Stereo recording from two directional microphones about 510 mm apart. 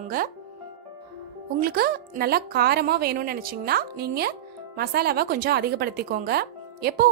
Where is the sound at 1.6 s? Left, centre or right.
Centre.